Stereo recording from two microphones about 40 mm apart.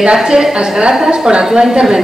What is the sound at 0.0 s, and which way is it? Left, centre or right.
A woman's voice, centre.